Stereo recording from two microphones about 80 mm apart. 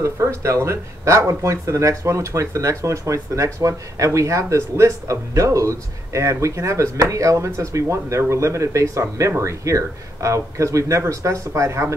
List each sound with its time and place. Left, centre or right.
0.0 s speech: right